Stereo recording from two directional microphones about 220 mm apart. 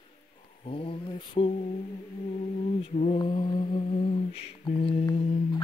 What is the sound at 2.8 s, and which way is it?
Mantra, 30° left (ahead or behind).